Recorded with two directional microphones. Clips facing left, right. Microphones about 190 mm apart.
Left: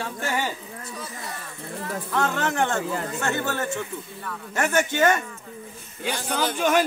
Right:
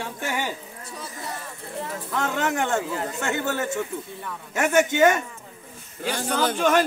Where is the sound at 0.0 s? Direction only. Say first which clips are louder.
Left 1 dB; 15° right (ahead or behind).